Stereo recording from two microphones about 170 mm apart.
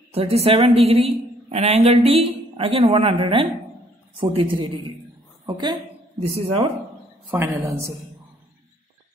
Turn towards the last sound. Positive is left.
turn(degrees=-15)  # may be behind; listen again after turning